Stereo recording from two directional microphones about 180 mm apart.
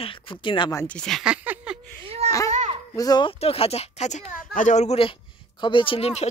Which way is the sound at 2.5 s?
40° right (ahead or behind).